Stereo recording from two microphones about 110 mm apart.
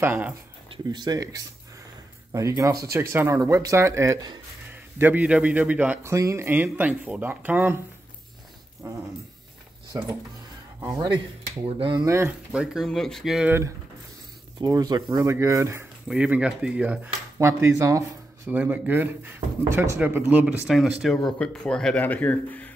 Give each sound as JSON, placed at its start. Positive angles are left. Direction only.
{"t": 0.0, "sound": "speech", "side_deg": -15}
{"t": 0.8, "sound": "speech", "side_deg": -40}
{"t": 4.9, "sound": "speech", "side_deg": -15}
{"t": 6.0, "sound": "speech", "side_deg": -25}
{"t": 8.8, "sound": "speech", "side_deg": -25}
{"t": 12.5, "sound": "speech", "side_deg": 0}
{"t": 13.5, "sound": "speech", "side_deg": -25}
{"t": 14.6, "sound": "speech", "side_deg": -35}
{"t": 16.1, "sound": "speech", "side_deg": -10}
{"t": 17.4, "sound": "speech", "side_deg": -25}
{"t": 18.5, "sound": "speech", "side_deg": -15}
{"t": 20.6, "sound": "a man's voice", "side_deg": -5}